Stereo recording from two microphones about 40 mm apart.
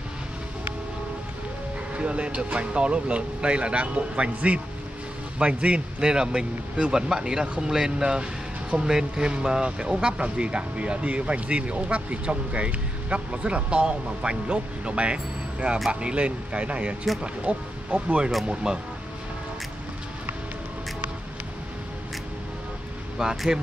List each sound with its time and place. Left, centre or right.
2.0 s speech: right
5.9 s speech: centre
23.2 s speech: right